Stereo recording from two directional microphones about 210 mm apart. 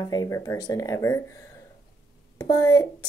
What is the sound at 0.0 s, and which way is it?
Speech, 20° left (ahead or behind).